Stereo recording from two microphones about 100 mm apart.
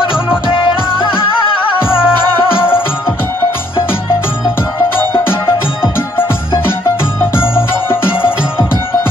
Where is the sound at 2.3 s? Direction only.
20° left (ahead or behind).